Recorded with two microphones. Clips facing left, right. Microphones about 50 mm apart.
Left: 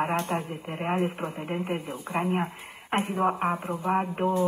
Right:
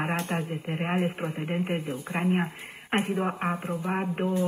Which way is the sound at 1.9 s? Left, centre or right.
Centre.